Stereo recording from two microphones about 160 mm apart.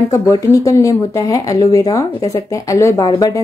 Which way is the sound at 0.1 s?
20° left (ahead or behind).